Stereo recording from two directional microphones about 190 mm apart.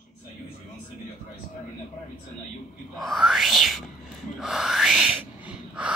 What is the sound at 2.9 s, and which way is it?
Music, centre (ahead or behind).